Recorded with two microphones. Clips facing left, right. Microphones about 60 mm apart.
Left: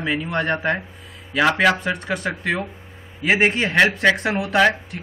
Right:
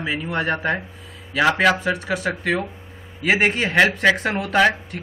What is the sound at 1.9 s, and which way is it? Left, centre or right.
Speech, left.